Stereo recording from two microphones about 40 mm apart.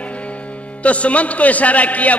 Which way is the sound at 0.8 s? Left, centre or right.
Left.